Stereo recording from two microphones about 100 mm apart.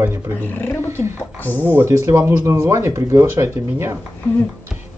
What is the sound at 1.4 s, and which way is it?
Speech, 20° left (ahead or behind).